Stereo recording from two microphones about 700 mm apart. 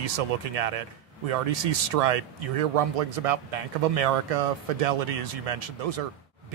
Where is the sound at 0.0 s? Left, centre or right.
Right.